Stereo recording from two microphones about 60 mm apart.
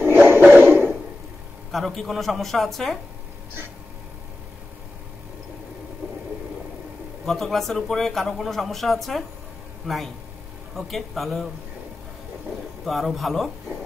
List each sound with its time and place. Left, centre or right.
0.0 s a sound: right
1.7 s speech: centre
7.2 s speech: centre
12.8 s speech: centre